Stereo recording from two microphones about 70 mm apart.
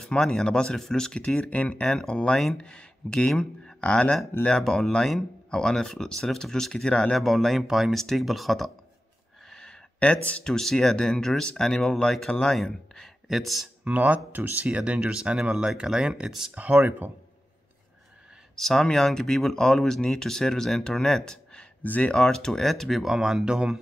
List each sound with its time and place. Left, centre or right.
0.0 s speech: centre
7.2 s speech: centre
9.5 s a sound: centre
10.3 s speech: centre
13.8 s speech: right
16.5 s speech: right
18.6 s speech: centre
21.8 s speech: left
22.1 s speech: centre